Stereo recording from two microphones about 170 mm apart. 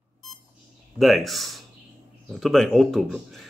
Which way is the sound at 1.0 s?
Centre (ahead or behind).